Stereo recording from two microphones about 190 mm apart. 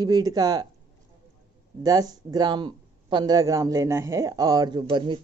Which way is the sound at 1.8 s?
20° right (ahead or behind).